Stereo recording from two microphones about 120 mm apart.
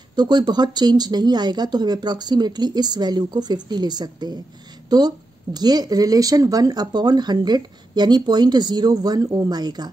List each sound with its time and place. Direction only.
0.1 s speech: 35° right (ahead or behind)